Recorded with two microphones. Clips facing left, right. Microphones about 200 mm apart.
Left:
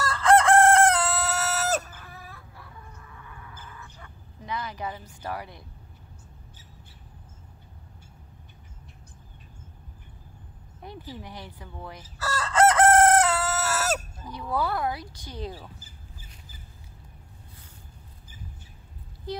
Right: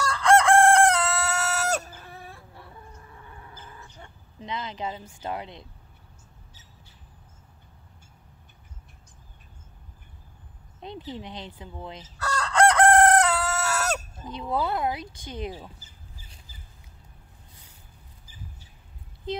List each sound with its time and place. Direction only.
0.0 s chicken: centre (ahead or behind)
2.0 s chicken: 30° right (ahead or behind)
3.8 s a sound: 20° right (ahead or behind)
5.2 s speech: 20° right (ahead or behind)
11.1 s speech: 20° right (ahead or behind)
12.2 s chicken: 5° left (ahead or behind)
14.2 s speech: 20° right (ahead or behind)
19.3 s speech: 20° right (ahead or behind)